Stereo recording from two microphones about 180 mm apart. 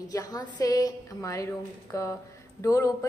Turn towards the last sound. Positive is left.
turn(degrees=20)  # may be behind; listen again after turning